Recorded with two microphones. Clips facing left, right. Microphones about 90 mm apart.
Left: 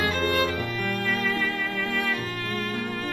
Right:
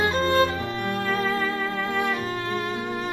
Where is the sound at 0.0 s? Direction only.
25° right (ahead or behind).